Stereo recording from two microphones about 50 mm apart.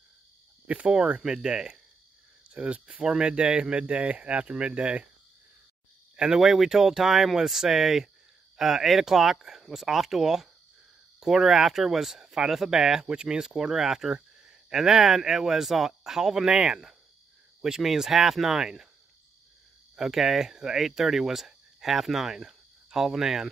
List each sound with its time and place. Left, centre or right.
0.7 s speech: right
6.1 s speech: centre
20.0 s speech: centre